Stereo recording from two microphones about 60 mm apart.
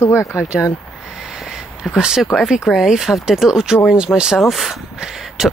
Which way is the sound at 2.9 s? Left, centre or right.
Centre.